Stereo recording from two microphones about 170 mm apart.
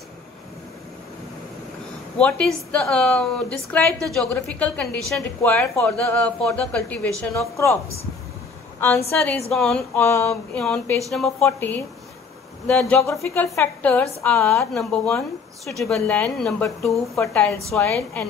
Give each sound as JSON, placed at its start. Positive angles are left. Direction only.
{"t": 2.1, "sound": "a woman's voice", "side_deg": 5}
{"t": 9.1, "sound": "a woman's voice", "side_deg": 10}
{"t": 10.0, "sound": "a woman's voice", "side_deg": 15}
{"t": 10.6, "sound": "a woman's voice", "side_deg": 5}
{"t": 12.9, "sound": "a woman's voice", "side_deg": 15}
{"t": 17.2, "sound": "a woman's voice", "side_deg": 15}